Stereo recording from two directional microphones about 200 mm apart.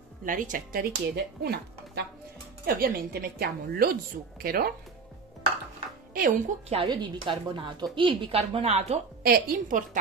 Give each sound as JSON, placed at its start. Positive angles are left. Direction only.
{"t": 0.2, "sound": "speech", "side_deg": -40}
{"t": 6.1, "sound": "speech", "side_deg": -45}
{"t": 6.7, "sound": "a woman's voice", "side_deg": -25}
{"t": 9.2, "sound": "speech", "side_deg": -50}